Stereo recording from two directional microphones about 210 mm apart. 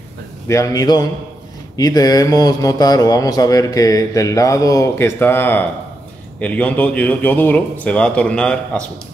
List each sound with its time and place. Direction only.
0.5 s speech: 15° left (ahead or behind)